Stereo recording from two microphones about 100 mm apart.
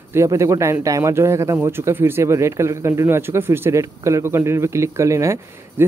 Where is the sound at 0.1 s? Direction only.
30° right (ahead or behind).